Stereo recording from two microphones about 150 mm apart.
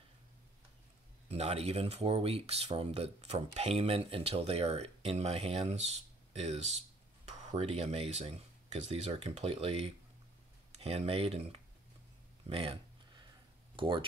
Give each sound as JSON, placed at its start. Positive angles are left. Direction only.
{"t": 1.3, "sound": "speech", "side_deg": -40}
{"t": 12.4, "sound": "a sound", "side_deg": -40}
{"t": 13.7, "sound": "speech", "side_deg": -35}